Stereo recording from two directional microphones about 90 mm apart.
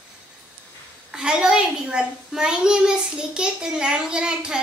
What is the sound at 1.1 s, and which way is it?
Speech, 10° right (ahead or behind).